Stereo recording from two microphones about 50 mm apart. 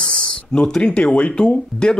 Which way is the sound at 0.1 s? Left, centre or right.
Centre.